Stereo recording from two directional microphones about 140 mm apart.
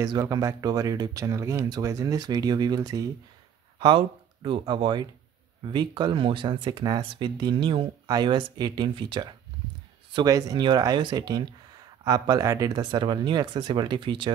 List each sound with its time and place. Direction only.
0.0 s speech: 25° right (ahead or behind)
3.8 s speech: 35° right (ahead or behind)
10.1 s speech: 25° right (ahead or behind)